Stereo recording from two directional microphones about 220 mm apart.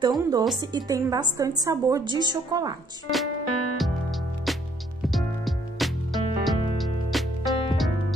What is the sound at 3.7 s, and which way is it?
Music, centre (ahead or behind).